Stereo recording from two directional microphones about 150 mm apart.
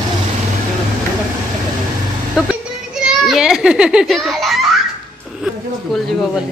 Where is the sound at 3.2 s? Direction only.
5° right (ahead or behind).